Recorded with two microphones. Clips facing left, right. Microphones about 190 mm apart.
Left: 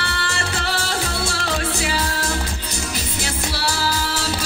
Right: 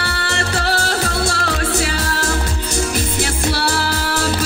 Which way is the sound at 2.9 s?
55° right (ahead or behind).